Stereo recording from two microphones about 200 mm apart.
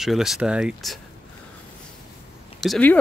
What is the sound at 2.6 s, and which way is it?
Speech, 5° left (ahead or behind).